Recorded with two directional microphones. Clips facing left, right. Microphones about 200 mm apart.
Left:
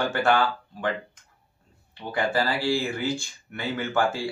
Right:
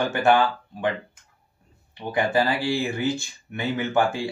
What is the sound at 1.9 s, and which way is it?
Speech, 20° right (ahead or behind).